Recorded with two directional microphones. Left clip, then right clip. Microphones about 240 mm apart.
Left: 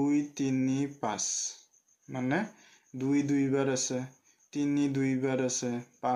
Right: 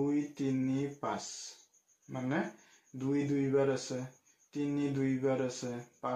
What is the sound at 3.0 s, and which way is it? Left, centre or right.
Speech, left.